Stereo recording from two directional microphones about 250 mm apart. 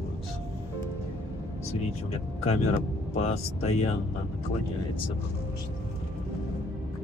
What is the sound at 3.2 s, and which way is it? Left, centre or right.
Speech, left.